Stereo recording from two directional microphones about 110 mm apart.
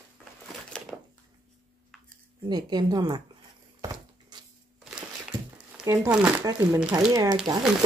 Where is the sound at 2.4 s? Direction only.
40° right (ahead or behind).